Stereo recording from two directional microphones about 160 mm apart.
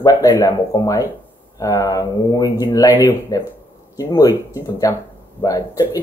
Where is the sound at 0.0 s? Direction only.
25° left (ahead or behind).